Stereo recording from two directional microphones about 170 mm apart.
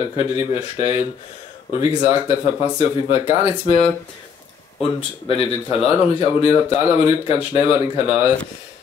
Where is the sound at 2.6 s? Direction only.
35° left (ahead or behind).